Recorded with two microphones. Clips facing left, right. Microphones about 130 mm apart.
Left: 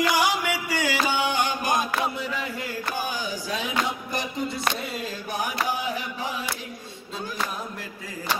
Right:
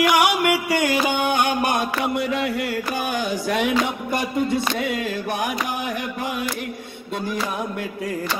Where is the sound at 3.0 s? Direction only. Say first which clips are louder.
Right 6 dB; 65° right (ahead or behind).